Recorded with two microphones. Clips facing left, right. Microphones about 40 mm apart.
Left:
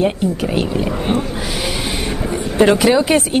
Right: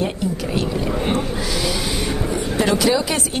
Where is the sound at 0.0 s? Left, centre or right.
Left.